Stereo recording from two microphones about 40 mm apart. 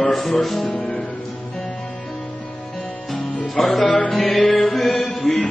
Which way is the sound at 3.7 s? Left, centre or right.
Centre.